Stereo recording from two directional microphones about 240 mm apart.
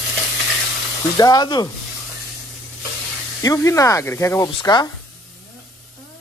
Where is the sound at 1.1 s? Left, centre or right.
Centre.